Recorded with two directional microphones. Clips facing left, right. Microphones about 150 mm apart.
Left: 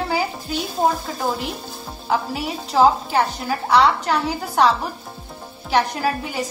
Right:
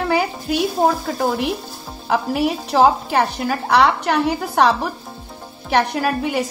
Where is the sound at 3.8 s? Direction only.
65° right (ahead or behind).